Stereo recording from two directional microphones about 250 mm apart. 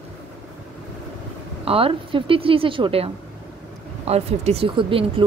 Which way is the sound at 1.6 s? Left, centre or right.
Right.